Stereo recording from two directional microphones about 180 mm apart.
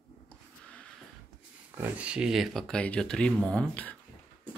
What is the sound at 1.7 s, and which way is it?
Speech, 10° right (ahead or behind).